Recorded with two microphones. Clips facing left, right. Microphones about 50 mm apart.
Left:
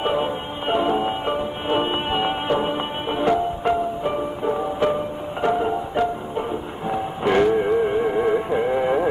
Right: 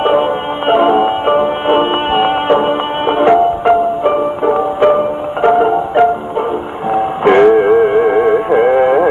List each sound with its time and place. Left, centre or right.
0.0 s music: right